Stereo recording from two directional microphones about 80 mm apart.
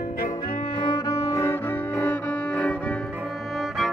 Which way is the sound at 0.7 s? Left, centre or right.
Left.